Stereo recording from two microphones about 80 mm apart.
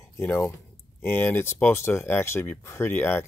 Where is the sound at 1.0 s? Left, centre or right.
Left.